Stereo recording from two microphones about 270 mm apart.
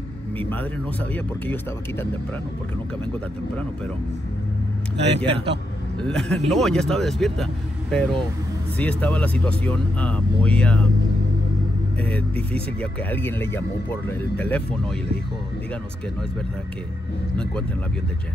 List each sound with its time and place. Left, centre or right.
0.4 s speech: centre
5.0 s speech: right
5.9 s speech: centre
12.0 s speech: centre